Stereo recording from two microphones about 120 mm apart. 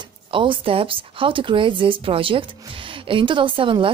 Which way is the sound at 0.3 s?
45° right (ahead or behind).